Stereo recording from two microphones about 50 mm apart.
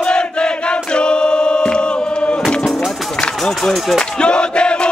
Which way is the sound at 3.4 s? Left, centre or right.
Centre.